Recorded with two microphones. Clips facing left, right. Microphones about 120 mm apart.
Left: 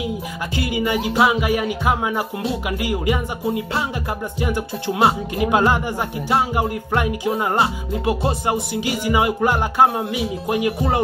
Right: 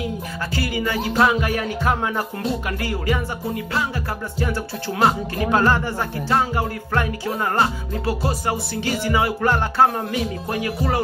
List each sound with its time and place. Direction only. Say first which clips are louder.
0.5 s speech: left 3 dB; 20° left (ahead or behind)
8.0 s music: left 2 dB; 20° left (ahead or behind)
8.8 s speech: left 1 dB; 15° left (ahead or behind)